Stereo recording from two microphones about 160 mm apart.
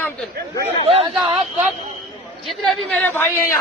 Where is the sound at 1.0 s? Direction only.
25° right (ahead or behind).